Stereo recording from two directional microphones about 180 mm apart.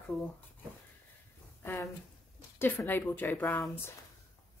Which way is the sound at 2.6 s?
10° left (ahead or behind).